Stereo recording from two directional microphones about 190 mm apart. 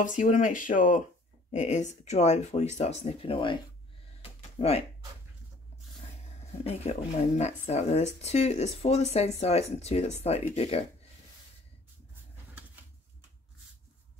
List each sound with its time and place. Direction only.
0.0 s speech: 40° left (ahead or behind)
4.2 s a sound: 30° left (ahead or behind)
6.6 s speech: 30° left (ahead or behind)